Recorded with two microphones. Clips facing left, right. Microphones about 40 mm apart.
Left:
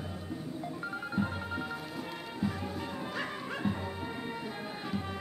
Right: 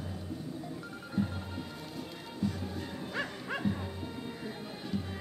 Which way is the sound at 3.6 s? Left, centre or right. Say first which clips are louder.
Even; left.